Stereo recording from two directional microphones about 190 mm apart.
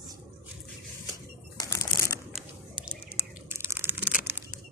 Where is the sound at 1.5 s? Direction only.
20° left (ahead or behind).